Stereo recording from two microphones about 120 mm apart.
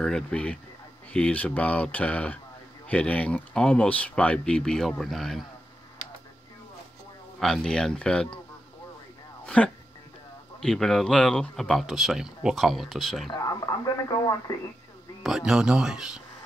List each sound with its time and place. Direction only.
0.0 s speech: 5° left (ahead or behind)
7.3 s speech: 5° left (ahead or behind)
9.5 s speech: 10° left (ahead or behind)
13.3 s speech: 30° left (ahead or behind)
15.2 s speech: 5° right (ahead or behind)